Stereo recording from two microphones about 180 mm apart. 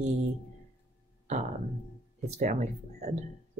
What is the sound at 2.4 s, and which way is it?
Speech, 40° right (ahead or behind).